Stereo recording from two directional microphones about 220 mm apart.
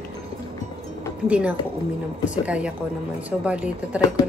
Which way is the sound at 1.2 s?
5° right (ahead or behind).